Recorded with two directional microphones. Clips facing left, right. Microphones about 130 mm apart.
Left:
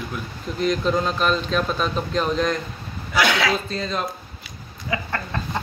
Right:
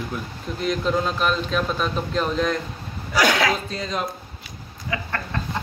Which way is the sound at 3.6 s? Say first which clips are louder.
Left 1 dB; 10° right (ahead or behind).